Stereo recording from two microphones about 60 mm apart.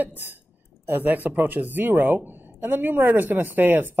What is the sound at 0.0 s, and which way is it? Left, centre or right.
Speech, right.